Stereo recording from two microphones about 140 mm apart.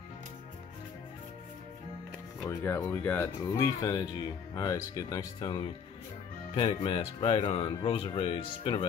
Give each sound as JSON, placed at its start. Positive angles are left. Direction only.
{"t": 2.5, "sound": "speech", "side_deg": 15}